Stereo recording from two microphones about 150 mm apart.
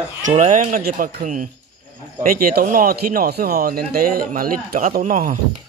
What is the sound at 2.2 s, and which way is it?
Speech, 75° right (ahead or behind).